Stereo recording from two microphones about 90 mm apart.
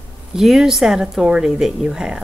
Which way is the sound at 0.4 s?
5° right (ahead or behind).